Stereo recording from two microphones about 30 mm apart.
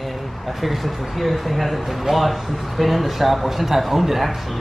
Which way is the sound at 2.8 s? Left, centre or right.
Centre.